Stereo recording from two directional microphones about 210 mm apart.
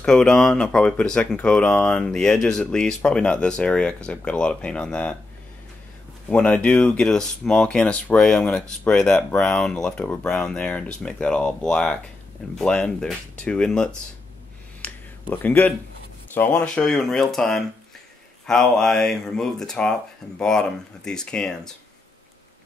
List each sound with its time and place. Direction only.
0.0 s speech: 5° left (ahead or behind)
6.2 s speech: 5° left (ahead or behind)
14.8 s a sound: 10° left (ahead or behind)
16.3 s speech: 5° left (ahead or behind)